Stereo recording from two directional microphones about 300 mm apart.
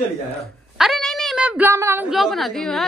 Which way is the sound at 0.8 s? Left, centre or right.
Centre.